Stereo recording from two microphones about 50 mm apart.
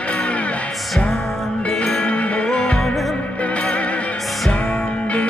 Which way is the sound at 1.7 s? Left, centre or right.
Centre.